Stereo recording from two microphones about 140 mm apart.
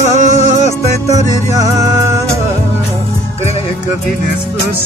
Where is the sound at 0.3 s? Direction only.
55° left (ahead or behind).